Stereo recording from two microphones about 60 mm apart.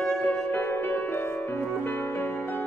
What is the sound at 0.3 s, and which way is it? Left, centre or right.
Music, left.